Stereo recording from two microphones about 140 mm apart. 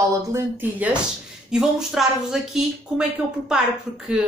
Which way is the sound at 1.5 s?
5° right (ahead or behind).